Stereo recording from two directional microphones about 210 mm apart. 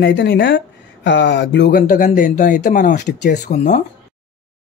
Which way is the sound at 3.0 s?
55° left (ahead or behind).